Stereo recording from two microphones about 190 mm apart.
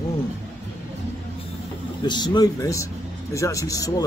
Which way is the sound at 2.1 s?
20° left (ahead or behind).